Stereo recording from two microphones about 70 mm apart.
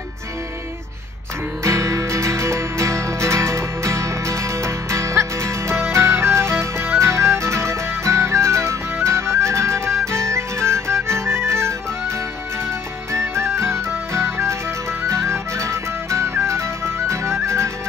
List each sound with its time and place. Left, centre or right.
1.6 s music: right
13.1 s music: right